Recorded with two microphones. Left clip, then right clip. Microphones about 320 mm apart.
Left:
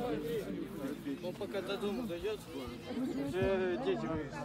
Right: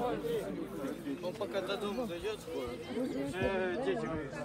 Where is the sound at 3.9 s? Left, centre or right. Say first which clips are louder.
Right 1 dB; left.